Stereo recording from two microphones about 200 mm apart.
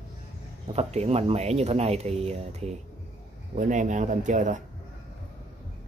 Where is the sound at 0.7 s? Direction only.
30° right (ahead or behind).